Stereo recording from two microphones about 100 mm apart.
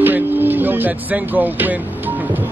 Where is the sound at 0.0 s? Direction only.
20° right (ahead or behind).